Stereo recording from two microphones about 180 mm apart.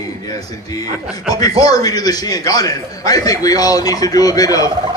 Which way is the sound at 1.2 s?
20° left (ahead or behind).